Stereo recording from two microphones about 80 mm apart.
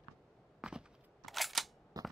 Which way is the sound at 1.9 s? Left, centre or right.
Right.